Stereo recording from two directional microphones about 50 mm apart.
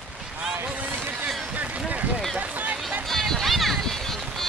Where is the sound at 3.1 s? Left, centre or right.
Centre.